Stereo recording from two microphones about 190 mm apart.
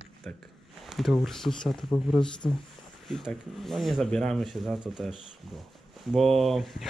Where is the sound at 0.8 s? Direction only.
Centre (ahead or behind).